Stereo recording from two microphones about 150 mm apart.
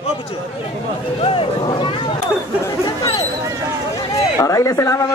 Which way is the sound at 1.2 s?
35° left (ahead or behind).